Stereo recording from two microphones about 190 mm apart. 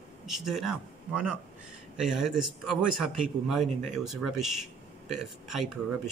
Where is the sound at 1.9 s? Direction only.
5° right (ahead or behind).